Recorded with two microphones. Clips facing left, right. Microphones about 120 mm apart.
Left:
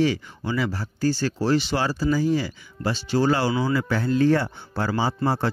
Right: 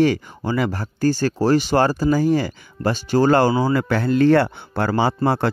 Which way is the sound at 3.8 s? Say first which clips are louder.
Right 4 dB; 65° right (ahead or behind).